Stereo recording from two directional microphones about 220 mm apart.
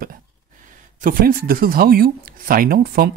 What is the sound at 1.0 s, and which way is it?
Speech, 40° right (ahead or behind).